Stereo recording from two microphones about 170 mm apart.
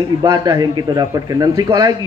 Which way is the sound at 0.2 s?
20° right (ahead or behind).